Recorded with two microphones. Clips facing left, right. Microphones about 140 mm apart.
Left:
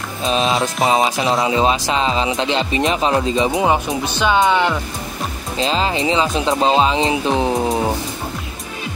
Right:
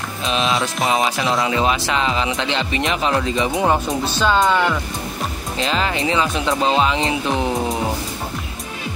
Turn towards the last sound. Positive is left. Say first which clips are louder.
# left 3 dB
turn(degrees=20)  # may be behind; listen again after turning